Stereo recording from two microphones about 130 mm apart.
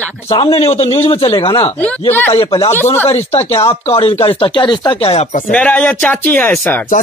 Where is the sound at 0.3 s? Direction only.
45° left (ahead or behind).